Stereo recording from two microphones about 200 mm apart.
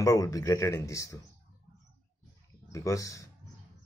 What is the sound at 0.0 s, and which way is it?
Speech, 15° left (ahead or behind).